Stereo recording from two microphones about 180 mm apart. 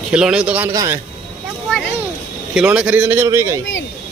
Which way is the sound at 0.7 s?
15° right (ahead or behind).